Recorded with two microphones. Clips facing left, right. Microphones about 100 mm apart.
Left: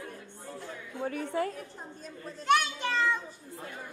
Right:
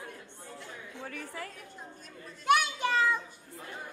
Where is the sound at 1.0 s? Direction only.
25° left (ahead or behind).